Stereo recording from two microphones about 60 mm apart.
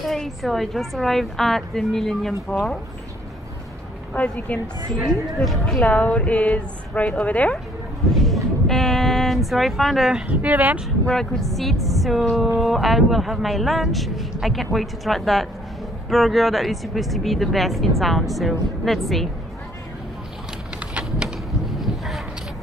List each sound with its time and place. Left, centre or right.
0.0 s speech: centre
4.1 s a woman's voice: left
5.0 s speech: centre
5.9 s a woman's voice: left
8.1 s a sound: centre
10.2 s speech: right
11.1 s speech: centre
21.6 s a sound: centre